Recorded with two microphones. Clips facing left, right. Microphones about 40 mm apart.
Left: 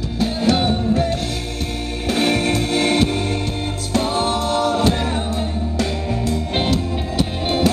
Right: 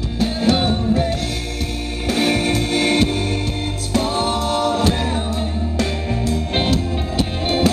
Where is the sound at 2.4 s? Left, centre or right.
Left.